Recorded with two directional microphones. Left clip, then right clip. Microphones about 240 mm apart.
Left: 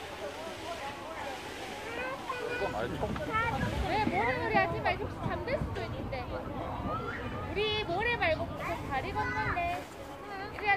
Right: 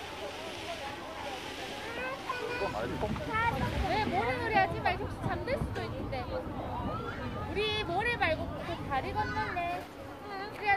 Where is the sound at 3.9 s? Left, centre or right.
Right.